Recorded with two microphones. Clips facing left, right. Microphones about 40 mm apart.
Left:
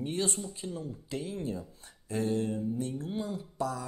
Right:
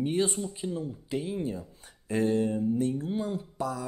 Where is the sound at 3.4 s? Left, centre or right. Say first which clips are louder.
Right 1 dB; right.